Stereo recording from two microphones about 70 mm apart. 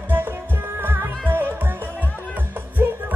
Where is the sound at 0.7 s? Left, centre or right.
Right.